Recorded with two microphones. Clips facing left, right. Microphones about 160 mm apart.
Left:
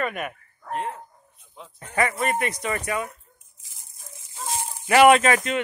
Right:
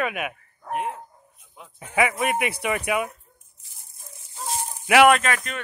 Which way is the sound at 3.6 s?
90° left.